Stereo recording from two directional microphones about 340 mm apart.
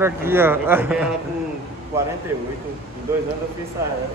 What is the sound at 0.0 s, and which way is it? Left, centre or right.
Speech, centre.